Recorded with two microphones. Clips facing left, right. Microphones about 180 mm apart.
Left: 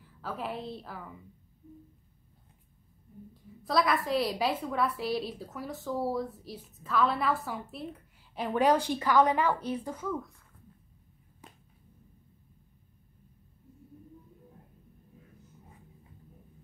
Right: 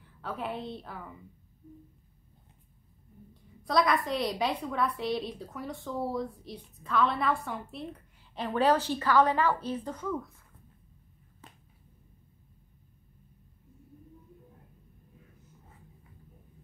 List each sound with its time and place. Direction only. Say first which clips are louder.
0.0 s a woman's voice: right 1 dB; centre (ahead or behind)
3.6 s a woman's voice: right 1 dB; centre (ahead or behind)
8.4 s speech: even; 15° left (ahead or behind)
11.4 s finger snapping: left 1 dB; 10° left (ahead or behind)